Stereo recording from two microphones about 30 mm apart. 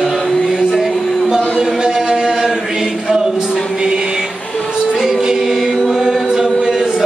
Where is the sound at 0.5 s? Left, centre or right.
Centre.